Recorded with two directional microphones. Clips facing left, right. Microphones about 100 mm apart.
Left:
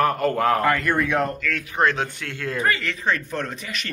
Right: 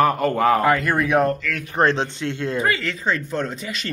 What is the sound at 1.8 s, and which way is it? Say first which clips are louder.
Speech: right 3 dB; 30° right (ahead or behind).